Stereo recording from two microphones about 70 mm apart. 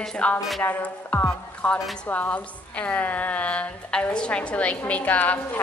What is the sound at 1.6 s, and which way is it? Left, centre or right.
A woman's voice, centre.